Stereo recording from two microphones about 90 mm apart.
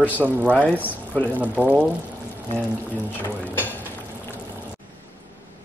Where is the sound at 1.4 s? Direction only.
15° right (ahead or behind).